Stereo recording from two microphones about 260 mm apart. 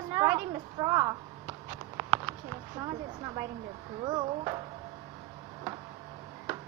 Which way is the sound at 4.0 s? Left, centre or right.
Centre.